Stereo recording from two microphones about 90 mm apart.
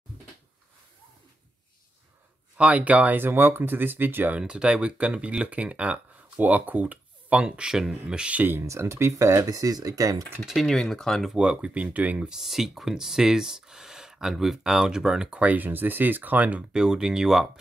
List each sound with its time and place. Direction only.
2.5 s speech: 15° right (ahead or behind)
4.4 s speech: 10° right (ahead or behind)
8.6 s speech: 30° right (ahead or behind)
9.5 s speech: 45° right (ahead or behind)
10.4 s speech: centre (ahead or behind)
11.3 s speech: 10° right (ahead or behind)